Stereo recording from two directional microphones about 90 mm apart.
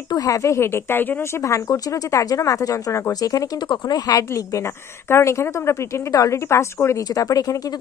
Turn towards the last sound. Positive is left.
turn(degrees=40)  # may be behind; listen again after turning